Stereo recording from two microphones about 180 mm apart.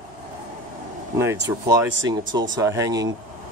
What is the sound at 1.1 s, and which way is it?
Speech, 15° right (ahead or behind).